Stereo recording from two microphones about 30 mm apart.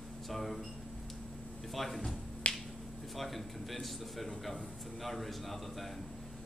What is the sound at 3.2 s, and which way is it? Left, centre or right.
A man's voice, centre.